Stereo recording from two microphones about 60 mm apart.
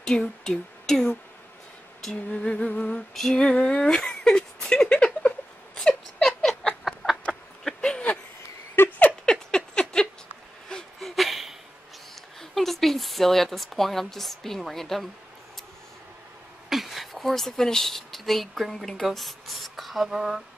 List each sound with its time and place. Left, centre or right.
0.0 s speech: centre
2.2 s humming: centre
2.7 s a sound: centre
3.2 s speech: centre
5.9 s rodents: centre
6.8 s chicken: centre
7.6 s a sound: centre
8.8 s rodents: left
9.2 s patter: centre
11.0 s a sound: centre
12.4 s speech: centre
16.6 s speech: centre